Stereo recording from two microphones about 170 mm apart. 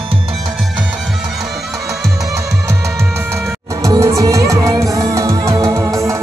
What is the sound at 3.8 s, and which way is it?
Music, 20° right (ahead or behind).